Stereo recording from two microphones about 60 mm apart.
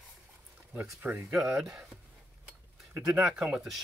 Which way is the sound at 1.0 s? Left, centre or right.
Right.